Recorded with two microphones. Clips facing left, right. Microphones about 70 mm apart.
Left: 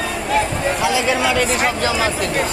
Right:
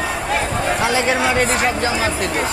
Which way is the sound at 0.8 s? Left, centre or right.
Right.